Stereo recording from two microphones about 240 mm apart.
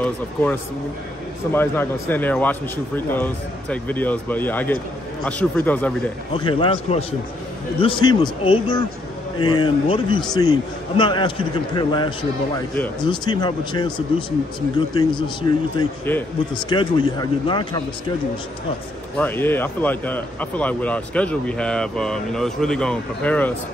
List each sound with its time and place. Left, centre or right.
0.0 s a man's voice: centre
6.3 s a man's voice: left
16.1 s speech: centre
16.6 s a man's voice: centre
19.1 s a man's voice: centre